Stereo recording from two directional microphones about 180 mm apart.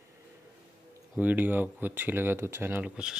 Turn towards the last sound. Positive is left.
turn(degrees=-5)  # may be behind; listen again after turning